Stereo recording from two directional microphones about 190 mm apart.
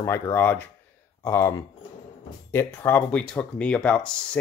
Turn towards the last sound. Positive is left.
turn(degrees=5)  # may be behind; listen again after turning